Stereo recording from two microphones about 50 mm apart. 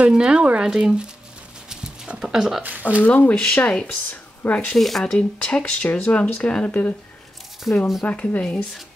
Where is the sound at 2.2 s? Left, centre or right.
Centre.